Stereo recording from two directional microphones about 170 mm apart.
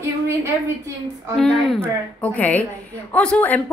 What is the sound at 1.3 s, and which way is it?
Speech, centre (ahead or behind).